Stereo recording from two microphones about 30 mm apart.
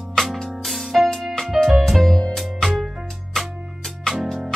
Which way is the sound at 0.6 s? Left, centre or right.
Centre.